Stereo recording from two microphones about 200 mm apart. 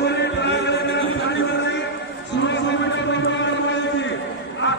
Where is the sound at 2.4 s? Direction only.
60° left (ahead or behind).